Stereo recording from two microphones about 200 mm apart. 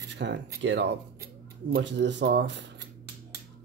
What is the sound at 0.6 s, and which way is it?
Speech, 60° right (ahead or behind).